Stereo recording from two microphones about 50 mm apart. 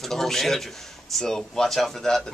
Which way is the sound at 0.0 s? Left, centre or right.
Centre.